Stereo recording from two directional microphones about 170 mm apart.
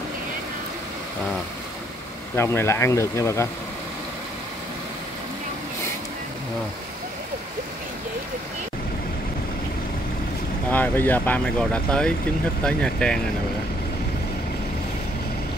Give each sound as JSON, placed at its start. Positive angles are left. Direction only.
{"t": 2.3, "sound": "speech", "side_deg": 15}
{"t": 10.7, "sound": "speech", "side_deg": 10}